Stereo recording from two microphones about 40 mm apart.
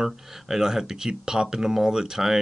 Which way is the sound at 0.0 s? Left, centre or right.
Centre.